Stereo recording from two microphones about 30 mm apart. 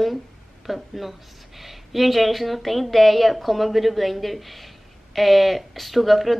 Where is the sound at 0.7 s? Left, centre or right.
Centre.